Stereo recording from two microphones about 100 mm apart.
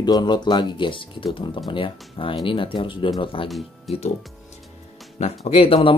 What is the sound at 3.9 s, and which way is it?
Speech, centre (ahead or behind).